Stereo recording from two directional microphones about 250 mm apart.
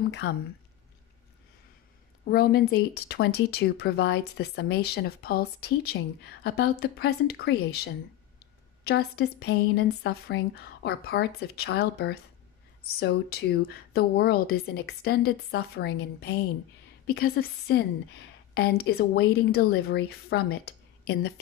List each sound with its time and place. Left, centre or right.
0.1 s speech: left
2.2 s speech: left